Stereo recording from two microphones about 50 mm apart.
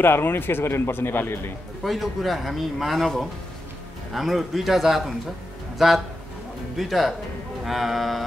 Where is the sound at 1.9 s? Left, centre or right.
Centre.